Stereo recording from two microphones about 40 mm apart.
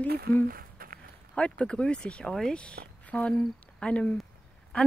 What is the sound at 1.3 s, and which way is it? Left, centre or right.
Speech, left.